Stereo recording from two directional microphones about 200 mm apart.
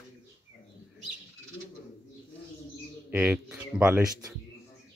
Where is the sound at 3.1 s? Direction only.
10° right (ahead or behind).